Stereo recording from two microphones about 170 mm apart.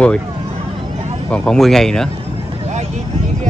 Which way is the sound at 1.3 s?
5° left (ahead or behind).